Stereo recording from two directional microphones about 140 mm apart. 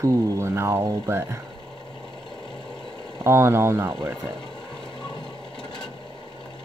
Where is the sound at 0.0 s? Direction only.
20° right (ahead or behind).